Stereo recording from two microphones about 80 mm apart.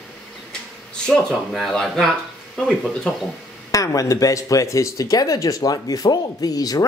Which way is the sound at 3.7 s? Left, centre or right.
Left.